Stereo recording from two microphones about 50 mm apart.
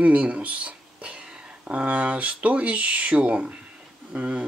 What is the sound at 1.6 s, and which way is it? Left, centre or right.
Speech, right.